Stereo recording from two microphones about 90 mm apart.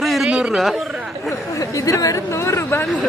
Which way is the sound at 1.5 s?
40° left (ahead or behind).